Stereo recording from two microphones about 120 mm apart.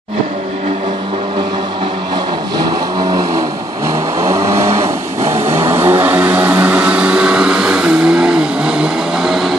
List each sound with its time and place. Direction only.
3.0 s vehicle: 30° right (ahead or behind)
5.2 s vehicle: 60° right (ahead or behind)
5.6 s vehicle: 20° right (ahead or behind); by 9.5 s centre (ahead or behind)